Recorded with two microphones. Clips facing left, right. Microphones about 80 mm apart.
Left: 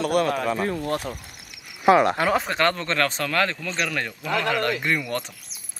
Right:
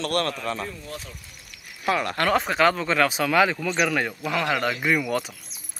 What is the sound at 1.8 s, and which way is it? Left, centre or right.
Speech, left.